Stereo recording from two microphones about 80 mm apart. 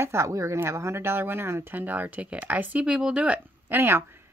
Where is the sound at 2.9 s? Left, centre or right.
Centre.